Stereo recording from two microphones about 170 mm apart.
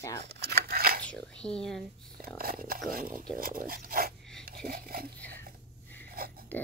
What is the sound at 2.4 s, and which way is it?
Speech, 60° right (ahead or behind).